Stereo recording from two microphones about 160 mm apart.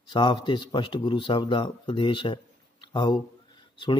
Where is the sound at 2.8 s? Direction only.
30° left (ahead or behind).